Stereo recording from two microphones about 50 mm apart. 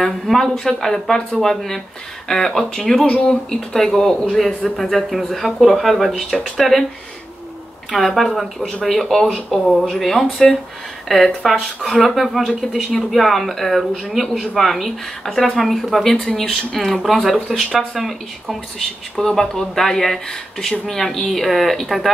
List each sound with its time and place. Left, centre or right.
0.0 s speech: centre
7.9 s speech: centre